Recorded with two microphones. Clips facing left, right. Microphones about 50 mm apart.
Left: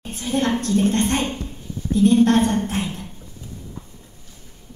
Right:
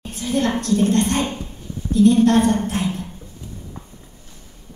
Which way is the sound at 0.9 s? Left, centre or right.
Left.